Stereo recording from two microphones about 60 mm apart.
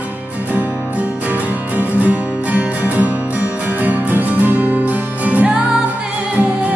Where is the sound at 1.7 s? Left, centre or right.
Right.